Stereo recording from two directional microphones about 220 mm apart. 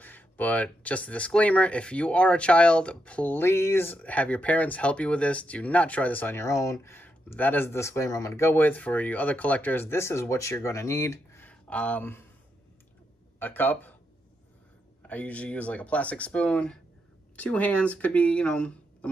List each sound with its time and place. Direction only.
0.0 s speech: 10° left (ahead or behind)
13.4 s speech: 10° left (ahead or behind)
15.0 s speech: 5° left (ahead or behind)